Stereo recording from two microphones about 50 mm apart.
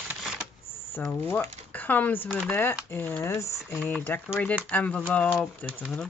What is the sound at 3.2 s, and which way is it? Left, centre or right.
Speech, left.